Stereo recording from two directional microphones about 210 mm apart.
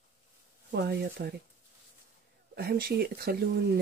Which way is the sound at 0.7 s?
50° right (ahead or behind).